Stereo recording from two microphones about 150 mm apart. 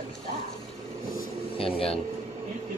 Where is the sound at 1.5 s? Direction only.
40° left (ahead or behind).